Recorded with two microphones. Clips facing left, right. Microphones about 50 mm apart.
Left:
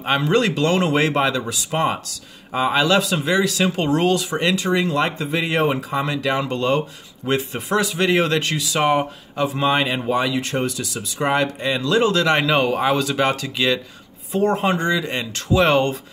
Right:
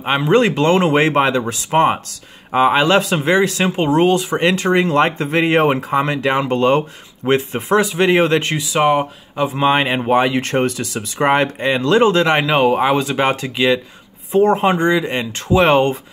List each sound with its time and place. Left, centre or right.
0.0 s speech: centre; by 3.7 s right
3.7 s speech: right
8.6 s speech: centre
9.5 s speech: right
12.4 s speech: centre